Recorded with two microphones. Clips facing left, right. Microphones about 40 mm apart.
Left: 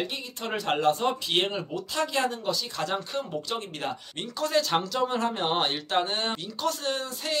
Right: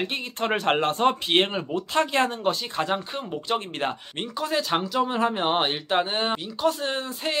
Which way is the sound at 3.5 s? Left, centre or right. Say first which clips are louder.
Right 5 dB; right.